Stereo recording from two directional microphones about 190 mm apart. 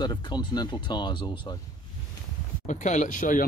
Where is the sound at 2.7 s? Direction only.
40° left (ahead or behind).